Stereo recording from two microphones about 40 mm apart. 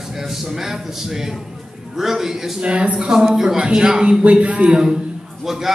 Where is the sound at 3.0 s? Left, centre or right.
Centre.